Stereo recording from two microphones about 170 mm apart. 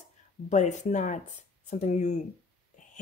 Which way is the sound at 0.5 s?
45° left (ahead or behind).